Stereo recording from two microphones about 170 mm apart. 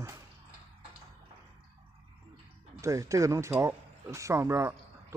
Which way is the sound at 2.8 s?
20° right (ahead or behind).